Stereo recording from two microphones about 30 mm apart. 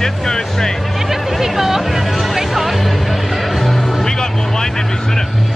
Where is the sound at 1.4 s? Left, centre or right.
Centre.